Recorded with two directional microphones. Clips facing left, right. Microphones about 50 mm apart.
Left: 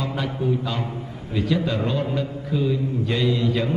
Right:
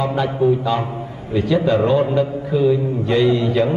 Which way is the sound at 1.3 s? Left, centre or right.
Centre.